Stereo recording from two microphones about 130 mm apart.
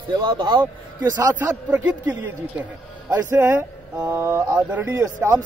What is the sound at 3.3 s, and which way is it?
A man's voice, 20° right (ahead or behind).